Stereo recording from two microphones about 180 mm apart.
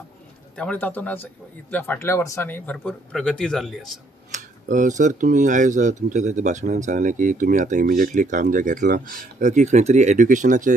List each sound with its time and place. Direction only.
0.6 s speech: 10° left (ahead or behind)
4.3 s speech: 45° right (ahead or behind)
7.8 s speech: 55° right (ahead or behind)